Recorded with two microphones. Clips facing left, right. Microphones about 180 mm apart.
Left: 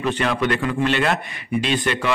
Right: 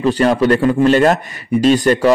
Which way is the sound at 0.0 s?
40° right (ahead or behind).